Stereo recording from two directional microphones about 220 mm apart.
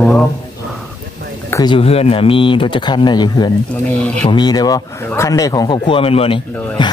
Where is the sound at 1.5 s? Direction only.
20° left (ahead or behind).